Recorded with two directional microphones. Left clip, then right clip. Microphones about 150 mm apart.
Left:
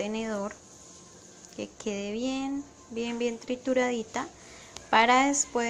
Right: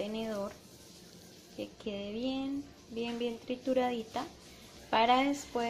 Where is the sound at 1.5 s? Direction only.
25° left (ahead or behind).